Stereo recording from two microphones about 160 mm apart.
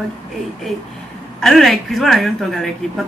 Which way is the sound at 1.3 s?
Centre (ahead or behind).